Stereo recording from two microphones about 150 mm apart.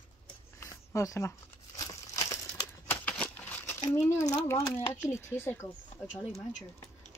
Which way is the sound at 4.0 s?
15° left (ahead or behind).